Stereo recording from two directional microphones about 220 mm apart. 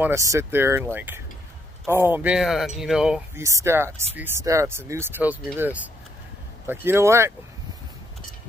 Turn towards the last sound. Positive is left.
turn(degrees=-10)  # may be behind; listen again after turning